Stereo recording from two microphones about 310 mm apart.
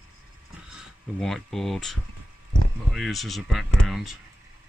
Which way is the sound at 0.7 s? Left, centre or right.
Centre.